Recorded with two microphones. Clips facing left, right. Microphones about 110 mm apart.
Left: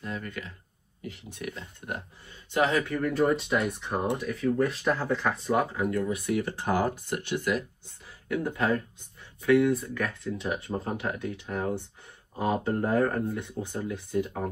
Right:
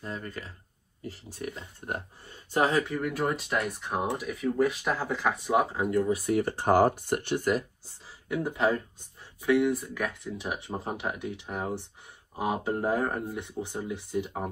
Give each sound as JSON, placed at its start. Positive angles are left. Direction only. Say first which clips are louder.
{"t": 0.0, "sound": "speech", "louder": "left 1 dB", "side_deg": -35}
{"t": 2.9, "sound": "speech", "louder": "left 4 dB", "side_deg": -10}
{"t": 5.7, "sound": "speech", "louder": "right 2 dB", "side_deg": -25}
{"t": 6.1, "sound": "speech", "louder": "right 2 dB", "side_deg": -40}
{"t": 8.3, "sound": "speech", "louder": "even", "side_deg": -15}